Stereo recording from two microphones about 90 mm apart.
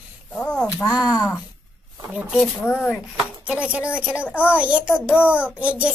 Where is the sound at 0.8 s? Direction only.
10° right (ahead or behind).